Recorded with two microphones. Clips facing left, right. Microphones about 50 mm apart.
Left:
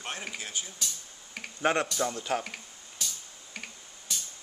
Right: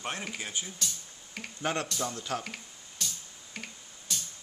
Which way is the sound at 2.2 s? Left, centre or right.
Left.